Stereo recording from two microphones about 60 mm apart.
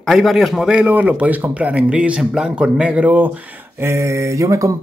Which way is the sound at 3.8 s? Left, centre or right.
Right.